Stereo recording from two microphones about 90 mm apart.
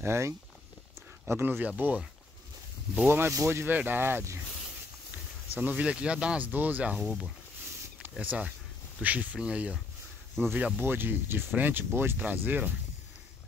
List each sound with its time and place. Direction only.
0.0 s speech: 30° right (ahead or behind)
3.1 s speech: 25° right (ahead or behind)
5.6 s speech: 15° right (ahead or behind)
8.0 s speech: 15° right (ahead or behind)